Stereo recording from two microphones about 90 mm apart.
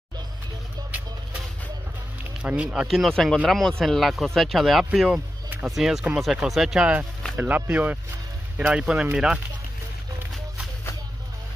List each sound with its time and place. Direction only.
2.4 s speech: 15° right (ahead or behind)
2.9 s speech: 5° left (ahead or behind); by 9.4 s 15° right (ahead or behind)